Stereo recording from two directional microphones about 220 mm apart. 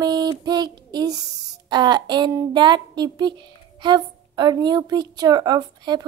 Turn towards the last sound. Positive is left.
turn(degrees=-20)  # may be behind; listen again after turning